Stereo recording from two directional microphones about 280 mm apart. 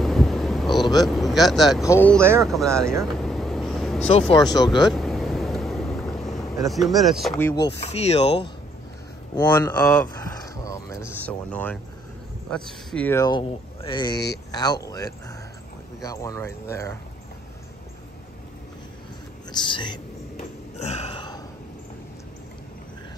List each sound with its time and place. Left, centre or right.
0.0 s a sound: centre
1.0 s speech: centre
2.4 s vehicle: centre
4.3 s speech: centre
4.8 s vehicle: centre
7.6 s speech: left
9.3 s speech: centre
19.5 s speech: centre
20.8 s a sound: left